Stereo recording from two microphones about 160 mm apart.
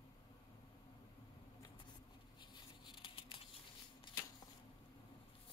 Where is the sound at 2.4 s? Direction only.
30° left (ahead or behind).